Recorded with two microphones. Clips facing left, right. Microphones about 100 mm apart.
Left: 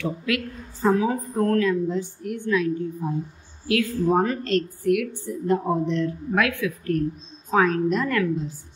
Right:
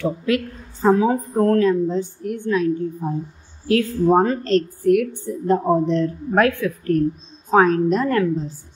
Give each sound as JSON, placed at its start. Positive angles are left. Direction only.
{"t": 0.0, "sound": "a woman's voice", "side_deg": -35}